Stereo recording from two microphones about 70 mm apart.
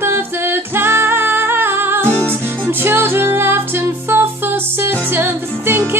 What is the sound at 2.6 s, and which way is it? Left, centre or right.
Music, right.